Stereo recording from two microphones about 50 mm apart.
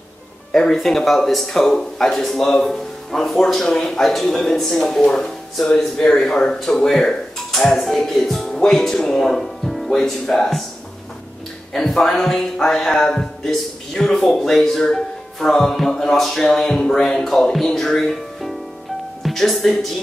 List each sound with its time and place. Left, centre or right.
0.5 s speech: centre
11.7 s speech: centre